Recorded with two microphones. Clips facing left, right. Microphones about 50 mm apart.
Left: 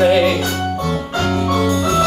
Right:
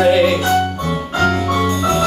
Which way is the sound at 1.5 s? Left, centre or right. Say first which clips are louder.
Even; right.